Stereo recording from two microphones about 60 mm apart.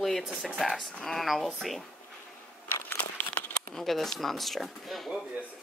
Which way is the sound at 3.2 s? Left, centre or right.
Left.